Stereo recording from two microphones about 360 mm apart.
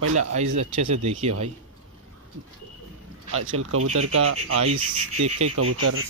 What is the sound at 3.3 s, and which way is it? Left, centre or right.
Speech, right.